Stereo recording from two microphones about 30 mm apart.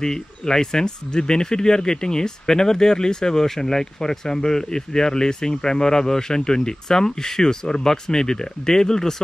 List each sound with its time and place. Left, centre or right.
0.0 s speech: centre